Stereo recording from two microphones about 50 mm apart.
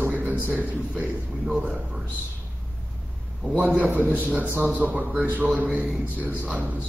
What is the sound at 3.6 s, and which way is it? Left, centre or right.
A man's voice, right.